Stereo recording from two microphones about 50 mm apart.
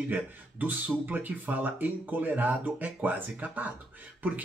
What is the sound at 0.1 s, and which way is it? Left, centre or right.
Speech, right.